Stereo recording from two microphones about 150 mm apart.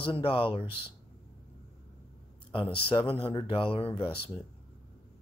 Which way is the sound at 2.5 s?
35° left (ahead or behind).